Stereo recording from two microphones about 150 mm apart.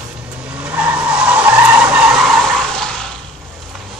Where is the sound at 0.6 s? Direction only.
10° right (ahead or behind).